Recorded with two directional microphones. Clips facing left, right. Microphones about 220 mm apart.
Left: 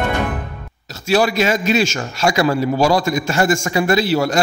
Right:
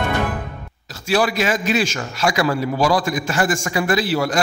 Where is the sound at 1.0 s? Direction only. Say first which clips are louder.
Left 3 dB; 25° left (ahead or behind).